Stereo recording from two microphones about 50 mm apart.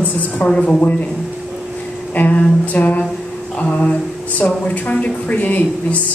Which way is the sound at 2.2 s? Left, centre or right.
Left.